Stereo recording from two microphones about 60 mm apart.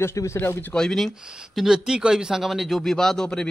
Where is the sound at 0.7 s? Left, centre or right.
Centre.